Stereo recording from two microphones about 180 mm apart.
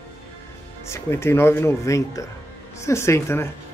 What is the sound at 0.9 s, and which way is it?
Speech, 15° left (ahead or behind).